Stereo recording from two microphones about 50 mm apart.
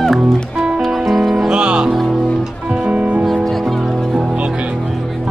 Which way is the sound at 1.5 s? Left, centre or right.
Centre.